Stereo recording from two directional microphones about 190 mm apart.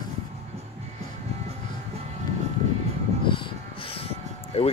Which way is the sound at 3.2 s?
25° left (ahead or behind).